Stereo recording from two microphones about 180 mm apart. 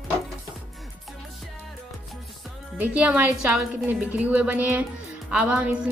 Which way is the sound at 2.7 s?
10° right (ahead or behind).